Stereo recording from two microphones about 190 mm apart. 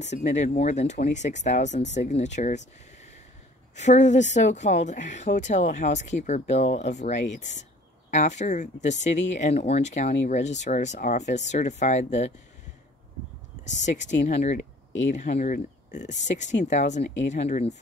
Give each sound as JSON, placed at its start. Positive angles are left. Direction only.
{"t": 0.0, "sound": "speech", "side_deg": 35}
{"t": 3.7, "sound": "speech", "side_deg": 40}
{"t": 13.8, "sound": "speech", "side_deg": 40}